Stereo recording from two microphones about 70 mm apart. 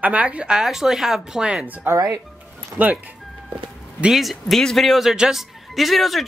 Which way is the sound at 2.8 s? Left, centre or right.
Right.